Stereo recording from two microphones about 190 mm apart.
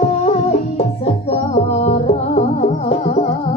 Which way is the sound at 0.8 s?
30° left (ahead or behind).